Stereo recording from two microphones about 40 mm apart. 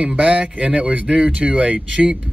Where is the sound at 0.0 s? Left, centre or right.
Right.